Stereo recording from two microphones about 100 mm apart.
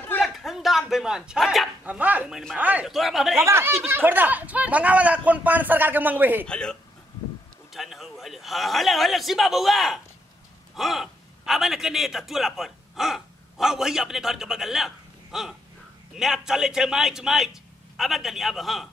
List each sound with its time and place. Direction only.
0.2 s a sound: centre (ahead or behind)
1.9 s speech: 15° right (ahead or behind)
2.9 s a man's voice: centre (ahead or behind)
3.4 s speech: 25° right (ahead or behind)
6.4 s speech: 10° left (ahead or behind)
7.7 s a man's voice: centre (ahead or behind)